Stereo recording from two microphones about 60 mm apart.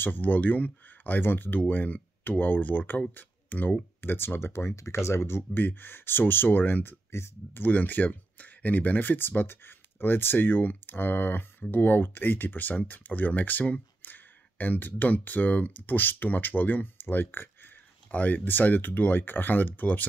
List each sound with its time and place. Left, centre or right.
0.0 s speech: left
7.6 s speech: left